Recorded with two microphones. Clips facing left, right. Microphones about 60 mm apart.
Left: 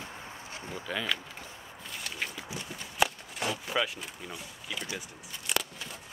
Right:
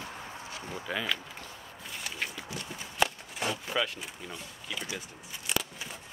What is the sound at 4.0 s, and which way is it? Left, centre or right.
Speech, centre.